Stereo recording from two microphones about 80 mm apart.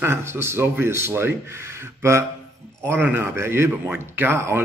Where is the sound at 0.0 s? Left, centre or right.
Right.